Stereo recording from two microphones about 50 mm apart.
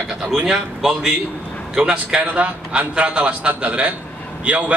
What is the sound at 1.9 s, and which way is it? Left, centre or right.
A man's voice, right.